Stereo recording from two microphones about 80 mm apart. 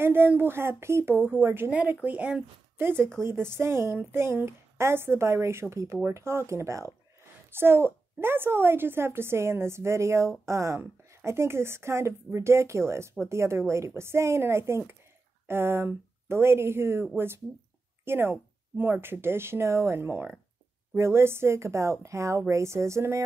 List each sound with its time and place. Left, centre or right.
0.0 s speech: right
1.7 s speech: centre
2.8 s a child's voice: right